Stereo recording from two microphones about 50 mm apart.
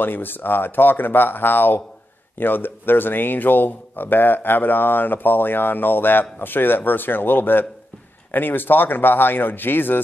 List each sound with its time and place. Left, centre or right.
0.0 s speech: left